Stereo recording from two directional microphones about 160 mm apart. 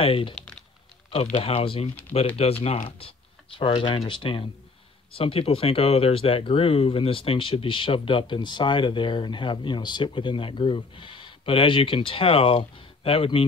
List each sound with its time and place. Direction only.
0.0 s speech: 35° left (ahead or behind)